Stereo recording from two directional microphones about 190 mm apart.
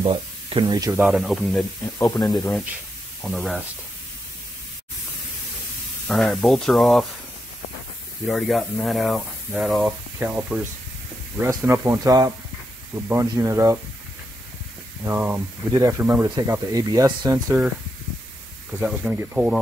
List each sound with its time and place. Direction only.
0.0 s speech: 30° right (ahead or behind)
0.9 s speech: 5° right (ahead or behind)
2.0 s speech: 15° left (ahead or behind)
2.3 s speech: 5° left (ahead or behind)
6.0 s speech: centre (ahead or behind)
8.3 s speech: centre (ahead or behind)
15.0 s speech: 10° right (ahead or behind)
18.8 s speech: 5° right (ahead or behind)